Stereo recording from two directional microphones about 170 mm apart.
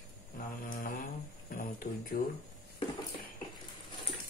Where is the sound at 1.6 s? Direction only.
55° left (ahead or behind).